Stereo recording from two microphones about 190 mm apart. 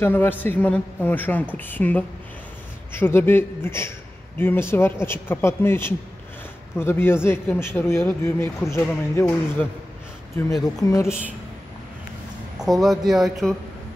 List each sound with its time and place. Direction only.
0.0 s a woman's voice: 10° left (ahead or behind)
12.5 s speech: centre (ahead or behind)